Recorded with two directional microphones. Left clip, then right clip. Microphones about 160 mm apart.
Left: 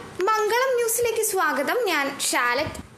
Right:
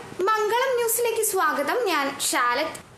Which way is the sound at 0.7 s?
20° left (ahead or behind).